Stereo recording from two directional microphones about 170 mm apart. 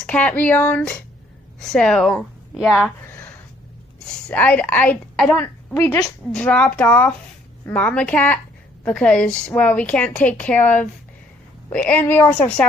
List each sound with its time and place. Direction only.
0.0 s a woman's voice: 10° left (ahead or behind)
4.3 s a woman's voice: 10° left (ahead or behind)